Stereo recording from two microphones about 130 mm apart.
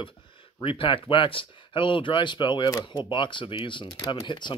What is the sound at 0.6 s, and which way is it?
Speech, 40° left (ahead or behind).